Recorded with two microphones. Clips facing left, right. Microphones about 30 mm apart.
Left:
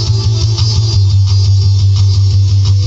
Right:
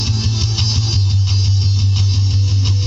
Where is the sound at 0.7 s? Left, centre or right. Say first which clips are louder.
Left 3 dB; left.